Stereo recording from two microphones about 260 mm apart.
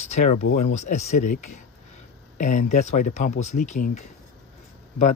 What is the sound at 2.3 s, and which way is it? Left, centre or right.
Speech, left.